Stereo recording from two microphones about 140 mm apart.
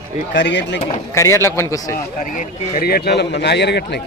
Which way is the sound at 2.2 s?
70° left (ahead or behind).